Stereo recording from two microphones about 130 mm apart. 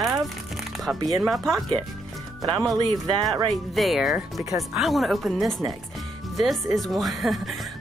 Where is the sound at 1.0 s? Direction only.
Centre (ahead or behind).